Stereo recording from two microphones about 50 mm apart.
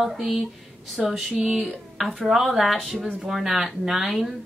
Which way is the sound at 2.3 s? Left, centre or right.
Centre.